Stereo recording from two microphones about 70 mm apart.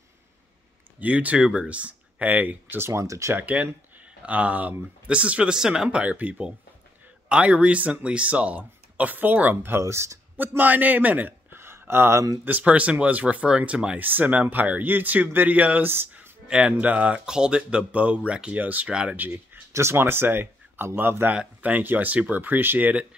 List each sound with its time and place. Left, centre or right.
0.9 s speech: right
2.8 s speech: right
3.3 s speech: right
10.4 s a man's voice: right
12.4 s speech: right
16.4 s speech: centre
19.7 s speech: right